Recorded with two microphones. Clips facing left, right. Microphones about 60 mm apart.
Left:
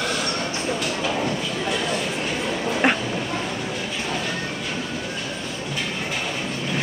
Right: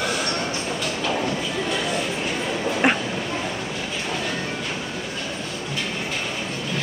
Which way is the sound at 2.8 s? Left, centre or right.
Centre.